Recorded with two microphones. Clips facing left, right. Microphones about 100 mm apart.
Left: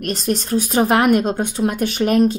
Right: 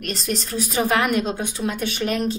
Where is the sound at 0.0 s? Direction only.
50° left (ahead or behind).